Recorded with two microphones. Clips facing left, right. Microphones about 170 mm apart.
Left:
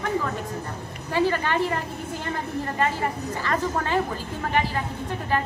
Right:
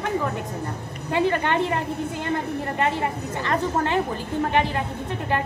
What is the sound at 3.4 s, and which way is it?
A woman's voice, 20° right (ahead or behind).